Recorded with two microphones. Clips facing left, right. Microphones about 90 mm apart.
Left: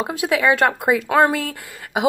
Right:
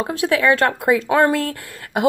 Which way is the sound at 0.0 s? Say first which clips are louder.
Right 1 dB; 15° left (ahead or behind).